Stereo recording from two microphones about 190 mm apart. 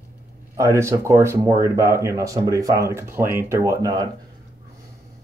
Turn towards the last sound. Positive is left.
turn(degrees=-20)  # may be behind; listen again after turning